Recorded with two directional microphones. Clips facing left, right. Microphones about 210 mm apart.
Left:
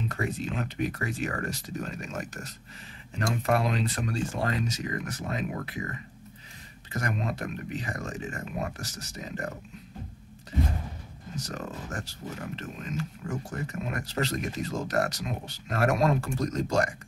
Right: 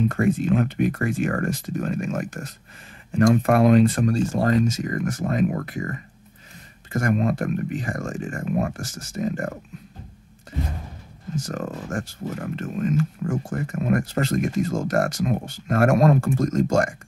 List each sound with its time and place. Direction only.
0.0 s speech: 50° right (ahead or behind)
11.3 s speech: 50° right (ahead or behind)